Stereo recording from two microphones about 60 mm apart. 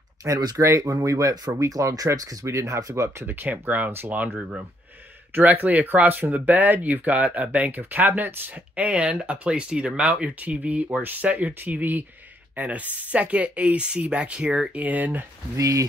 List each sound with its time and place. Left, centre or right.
0.2 s speech: right
2.4 s speech: right
3.3 s speech: right
5.3 s speech: right
15.5 s speech: right